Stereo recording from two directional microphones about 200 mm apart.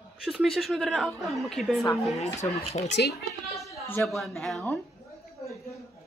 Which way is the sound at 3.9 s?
Centre (ahead or behind).